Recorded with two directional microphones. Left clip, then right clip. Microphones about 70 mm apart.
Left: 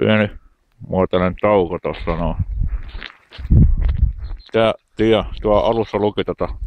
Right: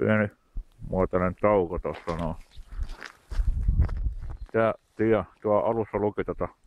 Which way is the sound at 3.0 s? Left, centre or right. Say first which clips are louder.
Left 8 dB; right.